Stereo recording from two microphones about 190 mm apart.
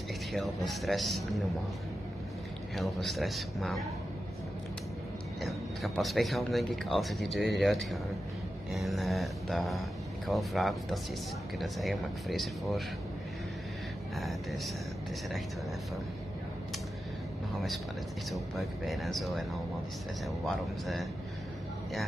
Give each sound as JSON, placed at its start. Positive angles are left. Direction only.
{"t": 0.3, "sound": "speech", "side_deg": 0}
{"t": 2.7, "sound": "speech", "side_deg": 0}
{"t": 5.4, "sound": "speech", "side_deg": 0}
{"t": 14.1, "sound": "speech", "side_deg": 0}
{"t": 18.3, "sound": "speech", "side_deg": 0}